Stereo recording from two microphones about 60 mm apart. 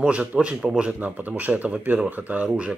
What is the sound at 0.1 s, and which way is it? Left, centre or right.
Speech, right.